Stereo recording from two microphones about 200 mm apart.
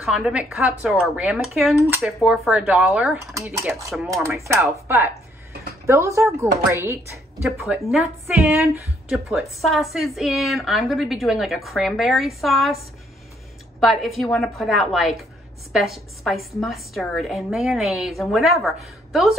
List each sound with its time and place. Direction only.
0.0 s a woman's voice: 5° right (ahead or behind)
3.3 s speech: 15° right (ahead or behind)
5.5 s a sound: 50° right (ahead or behind)
5.9 s speech: 15° right (ahead or behind)
7.4 s a woman's voice: centre (ahead or behind)